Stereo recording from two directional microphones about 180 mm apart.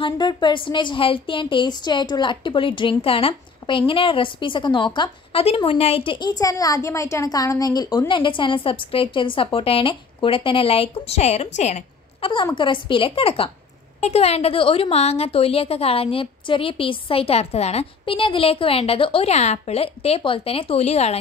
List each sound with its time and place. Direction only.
0.0 s a woman's voice: 25° left (ahead or behind)
12.5 s a woman's voice: 25° left (ahead or behind)